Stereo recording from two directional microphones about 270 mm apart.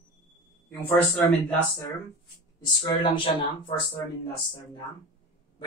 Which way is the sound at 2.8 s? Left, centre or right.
Centre.